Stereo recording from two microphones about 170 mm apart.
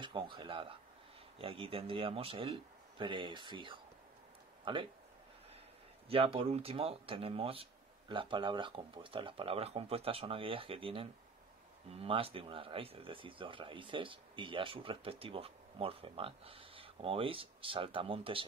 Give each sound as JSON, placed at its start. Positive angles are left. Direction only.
{"t": 0.0, "sound": "speech", "side_deg": -30}
{"t": 6.0, "sound": "speech", "side_deg": -35}